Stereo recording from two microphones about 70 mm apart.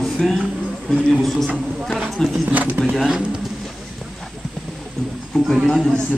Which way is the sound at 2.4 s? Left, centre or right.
Right.